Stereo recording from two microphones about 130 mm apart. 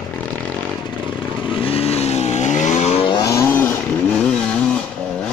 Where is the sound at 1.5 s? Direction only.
45° left (ahead or behind).